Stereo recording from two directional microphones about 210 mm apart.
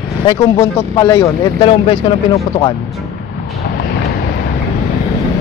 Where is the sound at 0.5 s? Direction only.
15° left (ahead or behind).